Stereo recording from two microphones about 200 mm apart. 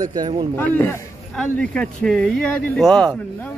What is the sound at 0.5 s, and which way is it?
A man's voice, 10° left (ahead or behind).